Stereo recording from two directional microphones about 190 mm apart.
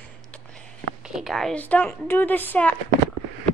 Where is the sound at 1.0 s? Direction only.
Centre (ahead or behind).